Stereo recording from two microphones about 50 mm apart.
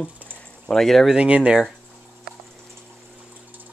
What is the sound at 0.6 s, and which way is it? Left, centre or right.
Speech, centre.